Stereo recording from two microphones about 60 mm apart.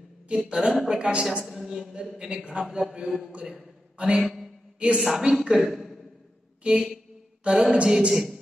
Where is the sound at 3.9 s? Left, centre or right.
Centre.